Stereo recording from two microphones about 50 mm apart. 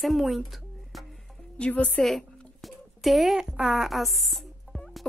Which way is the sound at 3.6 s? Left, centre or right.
Centre.